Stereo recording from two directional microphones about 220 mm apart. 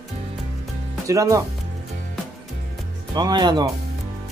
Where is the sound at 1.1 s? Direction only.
15° right (ahead or behind).